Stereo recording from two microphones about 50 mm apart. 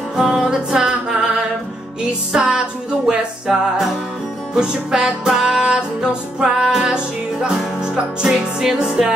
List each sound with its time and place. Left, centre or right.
0.1 s music: centre
2.3 s music: centre